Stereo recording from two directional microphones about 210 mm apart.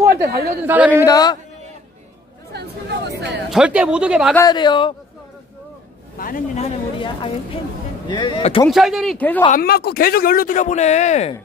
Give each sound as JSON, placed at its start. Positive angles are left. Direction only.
{"t": 0.0, "sound": "speech", "side_deg": -45}
{"t": 0.7, "sound": "a man's voice", "side_deg": -10}
{"t": 1.0, "sound": "a man's voice", "side_deg": 15}
{"t": 2.5, "sound": "speech", "side_deg": -50}
{"t": 3.4, "sound": "speech", "side_deg": -5}
{"t": 4.4, "sound": "speech", "side_deg": 20}
{"t": 6.1, "sound": "speech", "side_deg": 40}
{"t": 8.6, "sound": "speech", "side_deg": 0}
{"t": 9.5, "sound": "speech", "side_deg": 45}